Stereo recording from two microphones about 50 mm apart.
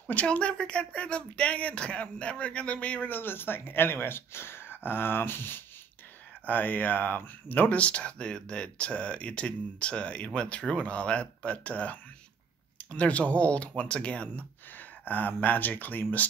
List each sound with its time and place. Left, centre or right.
0.1 s speech: left
3.1 s speech: left
6.4 s speech: left
7.8 s speech: left
14.8 s speech: left